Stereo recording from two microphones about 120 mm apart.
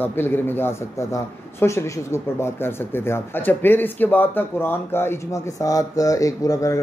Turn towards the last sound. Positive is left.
turn(degrees=25)  # may be behind; listen again after turning